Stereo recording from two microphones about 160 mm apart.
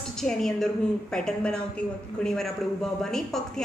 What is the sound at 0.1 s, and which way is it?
A woman's voice, 5° left (ahead or behind).